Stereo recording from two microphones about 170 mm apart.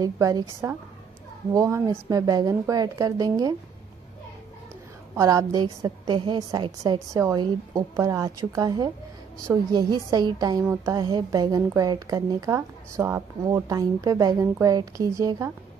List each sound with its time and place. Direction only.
0.0 s a woman's voice: 20° right (ahead or behind)
5.1 s a woman's voice: 20° right (ahead or behind)